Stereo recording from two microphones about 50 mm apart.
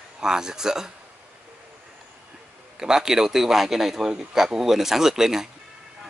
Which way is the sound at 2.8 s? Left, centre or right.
Centre.